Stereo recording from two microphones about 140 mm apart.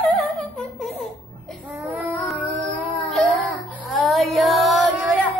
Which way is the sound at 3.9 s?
Centre (ahead or behind).